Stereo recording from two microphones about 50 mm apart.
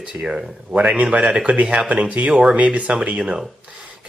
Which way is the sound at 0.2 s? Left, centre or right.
Centre.